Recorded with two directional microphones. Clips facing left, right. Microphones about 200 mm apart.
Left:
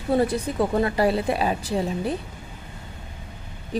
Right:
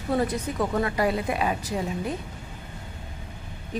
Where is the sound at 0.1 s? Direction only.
30° left (ahead or behind).